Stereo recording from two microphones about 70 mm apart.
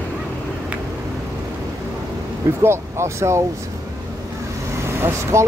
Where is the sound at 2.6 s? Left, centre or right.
Right.